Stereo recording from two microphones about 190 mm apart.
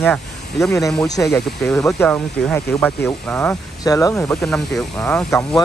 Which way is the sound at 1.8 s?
15° left (ahead or behind).